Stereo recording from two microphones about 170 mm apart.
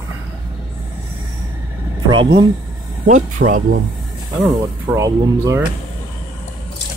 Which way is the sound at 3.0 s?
45° right (ahead or behind).